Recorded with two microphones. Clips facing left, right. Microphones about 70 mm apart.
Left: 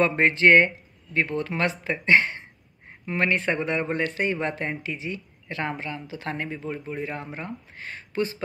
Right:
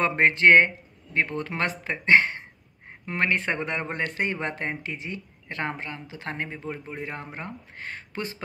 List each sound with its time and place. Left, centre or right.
0.2 s speech: right